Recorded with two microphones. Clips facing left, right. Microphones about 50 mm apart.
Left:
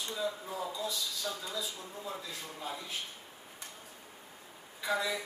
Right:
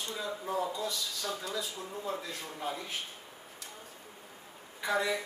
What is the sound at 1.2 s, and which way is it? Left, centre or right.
Speech, right.